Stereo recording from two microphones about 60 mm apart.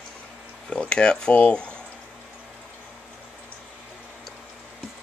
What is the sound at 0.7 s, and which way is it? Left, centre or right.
Speech, centre.